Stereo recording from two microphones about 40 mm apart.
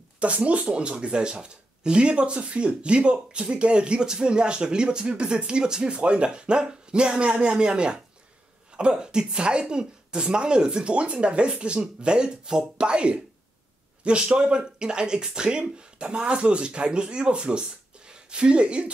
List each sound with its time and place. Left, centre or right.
0.2 s speech: right